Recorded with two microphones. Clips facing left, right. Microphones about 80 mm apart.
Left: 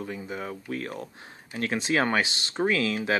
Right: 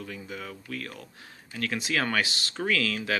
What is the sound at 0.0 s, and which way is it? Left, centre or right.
Speech, left.